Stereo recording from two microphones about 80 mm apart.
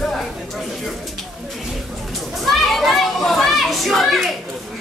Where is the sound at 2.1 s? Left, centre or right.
Centre.